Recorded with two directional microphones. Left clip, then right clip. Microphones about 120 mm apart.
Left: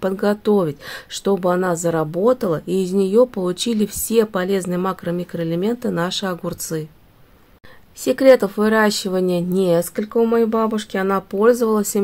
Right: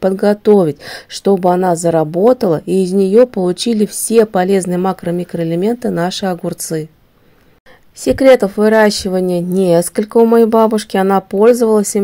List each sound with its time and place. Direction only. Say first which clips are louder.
0.0 s a woman's voice: right 7 dB; 30° right (ahead or behind)
8.0 s a woman's voice: right 4 dB; 30° right (ahead or behind)